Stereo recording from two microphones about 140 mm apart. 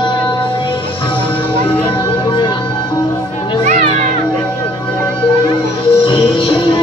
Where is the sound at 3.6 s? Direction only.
60° right (ahead or behind).